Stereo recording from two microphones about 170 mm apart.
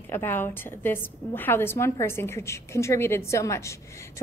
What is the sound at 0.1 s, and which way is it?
A woman's voice, 10° left (ahead or behind).